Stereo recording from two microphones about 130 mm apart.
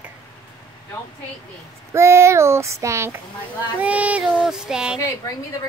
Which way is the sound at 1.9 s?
20° right (ahead or behind).